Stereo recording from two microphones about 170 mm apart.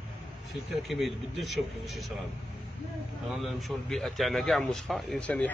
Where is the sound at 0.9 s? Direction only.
Centre (ahead or behind).